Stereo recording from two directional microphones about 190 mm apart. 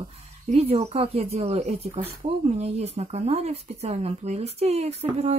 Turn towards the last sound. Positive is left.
turn(degrees=-35)  # may be behind; listen again after turning